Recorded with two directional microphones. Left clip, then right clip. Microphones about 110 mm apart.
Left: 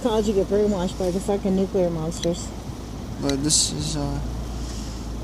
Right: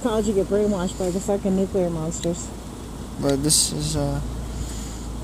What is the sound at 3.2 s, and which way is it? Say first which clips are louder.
Speech: right 1 dB; 90° right.